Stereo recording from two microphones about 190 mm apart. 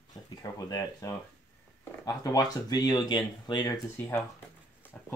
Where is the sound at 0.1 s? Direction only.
20° left (ahead or behind).